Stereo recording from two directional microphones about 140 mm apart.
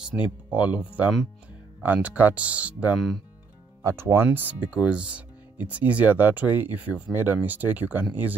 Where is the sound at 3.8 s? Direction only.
20° right (ahead or behind).